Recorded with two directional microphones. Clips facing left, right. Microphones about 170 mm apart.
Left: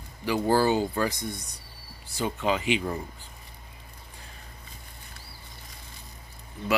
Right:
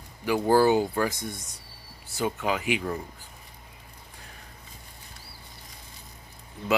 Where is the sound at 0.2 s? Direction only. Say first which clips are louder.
Right 2 dB; 15° right (ahead or behind).